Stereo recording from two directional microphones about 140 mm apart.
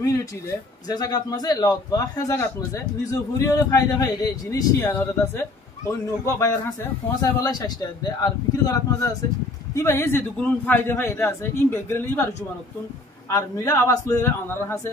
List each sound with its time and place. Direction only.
0.8 s a man's voice: 30° left (ahead or behind)
7.4 s a man's voice: 30° left (ahead or behind)
13.3 s a man's voice: 20° left (ahead or behind)